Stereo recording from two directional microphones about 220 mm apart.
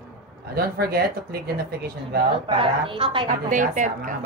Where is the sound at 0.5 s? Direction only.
45° right (ahead or behind).